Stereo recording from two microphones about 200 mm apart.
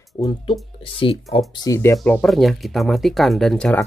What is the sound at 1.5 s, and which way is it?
Speech, 15° left (ahead or behind).